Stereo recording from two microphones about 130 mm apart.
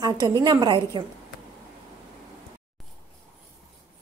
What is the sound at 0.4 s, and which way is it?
Speech, 35° right (ahead or behind).